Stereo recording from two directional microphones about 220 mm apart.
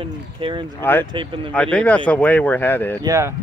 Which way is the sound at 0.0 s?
25° right (ahead or behind).